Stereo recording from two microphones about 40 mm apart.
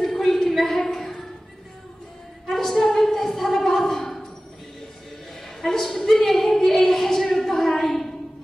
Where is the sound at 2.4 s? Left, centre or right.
Centre.